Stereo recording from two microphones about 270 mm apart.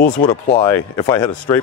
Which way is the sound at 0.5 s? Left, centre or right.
Centre.